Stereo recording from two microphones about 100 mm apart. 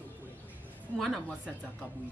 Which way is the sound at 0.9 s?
Centre (ahead or behind).